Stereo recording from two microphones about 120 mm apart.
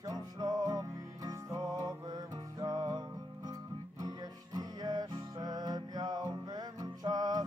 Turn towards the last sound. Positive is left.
turn(degrees=-35)  # may be behind; listen again after turning